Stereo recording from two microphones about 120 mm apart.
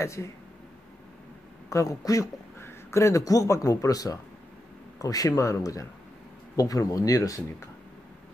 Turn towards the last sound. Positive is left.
turn(degrees=30)  # may be behind; listen again after turning